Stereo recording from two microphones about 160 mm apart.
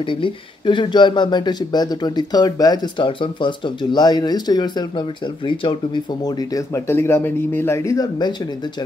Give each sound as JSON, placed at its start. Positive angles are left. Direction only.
{"t": 0.0, "sound": "speech", "side_deg": 30}